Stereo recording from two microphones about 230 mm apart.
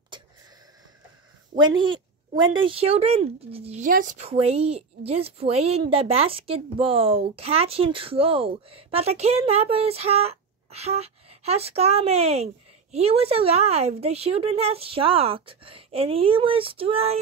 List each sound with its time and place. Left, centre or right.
1.6 s a woman's voice: centre